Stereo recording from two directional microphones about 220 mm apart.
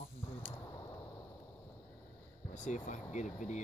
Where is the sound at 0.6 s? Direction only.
15° left (ahead or behind).